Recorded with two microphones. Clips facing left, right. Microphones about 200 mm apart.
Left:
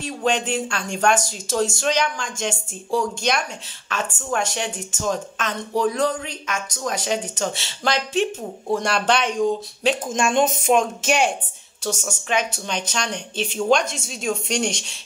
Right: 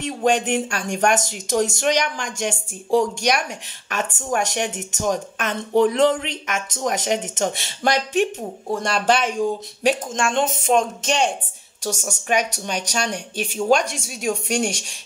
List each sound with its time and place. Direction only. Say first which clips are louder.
0.0 s speech: right 3 dB; 15° right (ahead or behind)
8.7 s speech: right 1 dB; centre (ahead or behind)
10.1 s speech: left 2 dB; 15° left (ahead or behind)
10.7 s speech: left 1 dB; 5° left (ahead or behind)
11.8 s speech: even; 10° right (ahead or behind)